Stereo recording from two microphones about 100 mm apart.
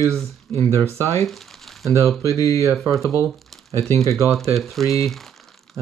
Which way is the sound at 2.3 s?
30° left (ahead or behind).